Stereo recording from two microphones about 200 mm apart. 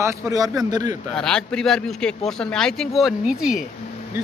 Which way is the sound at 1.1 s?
5° left (ahead or behind).